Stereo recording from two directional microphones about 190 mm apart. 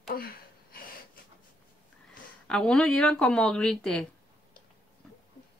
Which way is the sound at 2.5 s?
Centre (ahead or behind).